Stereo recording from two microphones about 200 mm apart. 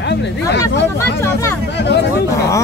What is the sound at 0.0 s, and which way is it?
Speech, 55° left (ahead or behind).